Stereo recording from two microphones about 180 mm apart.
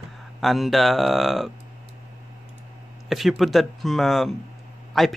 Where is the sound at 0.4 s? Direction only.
Centre (ahead or behind).